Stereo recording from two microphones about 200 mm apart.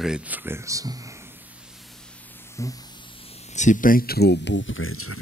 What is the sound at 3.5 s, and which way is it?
Speech, 35° left (ahead or behind).